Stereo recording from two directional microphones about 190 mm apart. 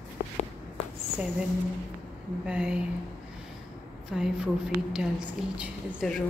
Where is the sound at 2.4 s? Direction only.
5° right (ahead or behind).